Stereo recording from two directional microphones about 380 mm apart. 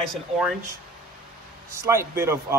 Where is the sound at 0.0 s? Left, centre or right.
Centre.